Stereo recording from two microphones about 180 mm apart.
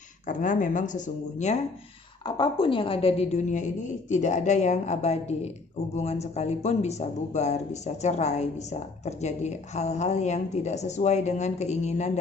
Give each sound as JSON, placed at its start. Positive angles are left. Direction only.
{"t": 0.3, "sound": "speech", "side_deg": 45}
{"t": 2.2, "sound": "speech", "side_deg": 25}